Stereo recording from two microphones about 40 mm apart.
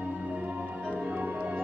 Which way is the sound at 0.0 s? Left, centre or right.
Right.